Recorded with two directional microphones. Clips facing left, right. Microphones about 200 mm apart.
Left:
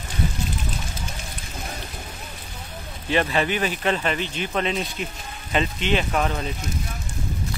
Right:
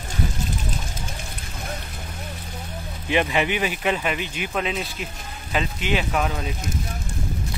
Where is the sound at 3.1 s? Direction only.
15° right (ahead or behind).